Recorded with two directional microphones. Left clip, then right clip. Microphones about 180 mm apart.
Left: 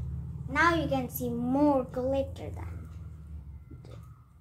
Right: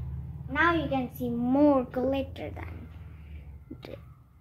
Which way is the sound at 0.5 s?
10° right (ahead or behind).